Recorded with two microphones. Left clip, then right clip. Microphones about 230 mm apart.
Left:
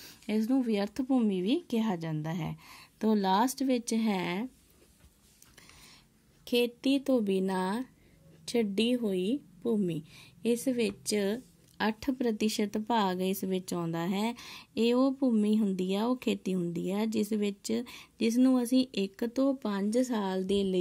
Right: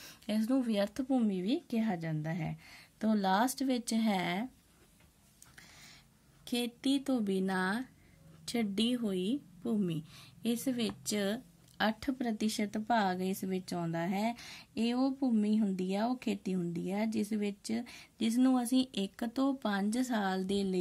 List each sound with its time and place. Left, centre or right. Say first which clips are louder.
0.0 s a woman's voice: left 3 dB; centre
6.4 s a woman's voice: left 7 dB; centre